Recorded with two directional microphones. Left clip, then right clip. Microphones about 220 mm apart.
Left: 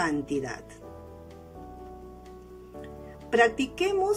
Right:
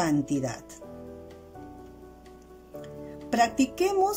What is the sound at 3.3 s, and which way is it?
Speech, 20° right (ahead or behind).